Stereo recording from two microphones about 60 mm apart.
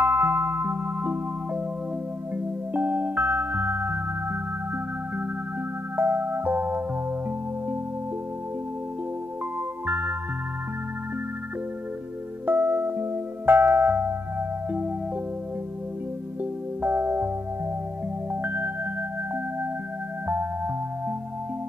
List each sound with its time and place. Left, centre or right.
0.0 s music: right
2.3 s music: right
5.9 s music: right
9.8 s music: right
12.4 s music: right
16.8 s music: right
18.3 s music: right
20.2 s music: right